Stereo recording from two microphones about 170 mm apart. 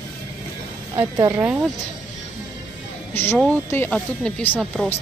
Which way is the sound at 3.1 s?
15° left (ahead or behind).